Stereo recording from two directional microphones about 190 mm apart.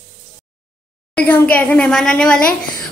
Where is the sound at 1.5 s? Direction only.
5° left (ahead or behind).